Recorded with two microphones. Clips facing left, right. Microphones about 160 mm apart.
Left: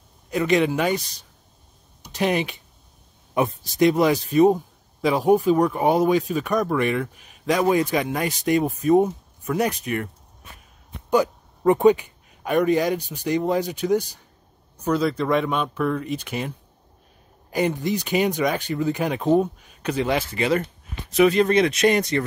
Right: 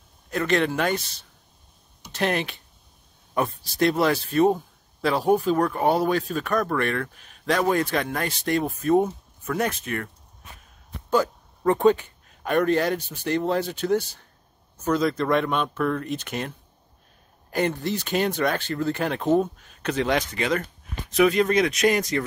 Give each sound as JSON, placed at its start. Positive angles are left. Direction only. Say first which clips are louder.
{"t": 0.3, "sound": "speech", "louder": "left 3 dB", "side_deg": 10}
{"t": 2.1, "sound": "speech", "louder": "left 3 dB", "side_deg": 10}
{"t": 5.4, "sound": "speech", "louder": "left 3 dB", "side_deg": 15}
{"t": 11.1, "sound": "speech", "louder": "left 2 dB", "side_deg": 15}